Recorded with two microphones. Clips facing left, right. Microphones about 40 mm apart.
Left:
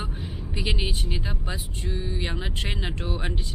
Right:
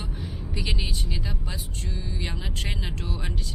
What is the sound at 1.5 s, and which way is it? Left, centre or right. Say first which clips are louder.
Speech: left 3 dB; left.